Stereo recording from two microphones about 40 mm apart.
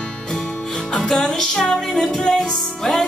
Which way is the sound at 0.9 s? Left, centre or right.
Centre.